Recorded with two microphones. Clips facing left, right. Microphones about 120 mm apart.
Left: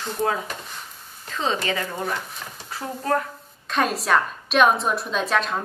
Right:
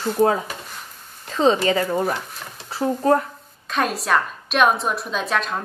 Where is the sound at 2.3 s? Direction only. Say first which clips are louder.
Even; centre (ahead or behind).